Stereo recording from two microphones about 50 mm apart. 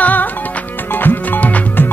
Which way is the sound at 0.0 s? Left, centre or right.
Left.